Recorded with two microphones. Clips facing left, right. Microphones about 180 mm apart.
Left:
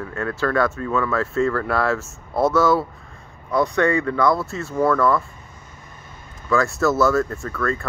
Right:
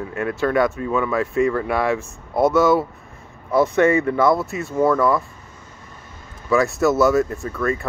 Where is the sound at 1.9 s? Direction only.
Centre (ahead or behind).